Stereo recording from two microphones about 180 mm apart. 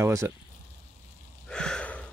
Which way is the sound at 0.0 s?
15° right (ahead or behind).